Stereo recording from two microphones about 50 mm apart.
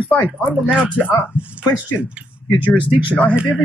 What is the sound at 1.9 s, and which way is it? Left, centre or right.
Speech, left.